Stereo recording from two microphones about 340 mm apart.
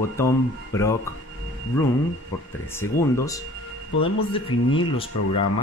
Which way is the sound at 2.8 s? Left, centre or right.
Centre.